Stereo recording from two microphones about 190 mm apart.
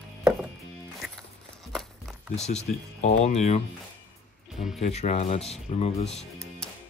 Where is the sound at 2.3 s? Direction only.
35° left (ahead or behind).